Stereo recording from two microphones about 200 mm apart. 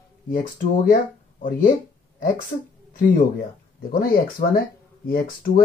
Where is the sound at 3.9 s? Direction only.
45° left (ahead or behind).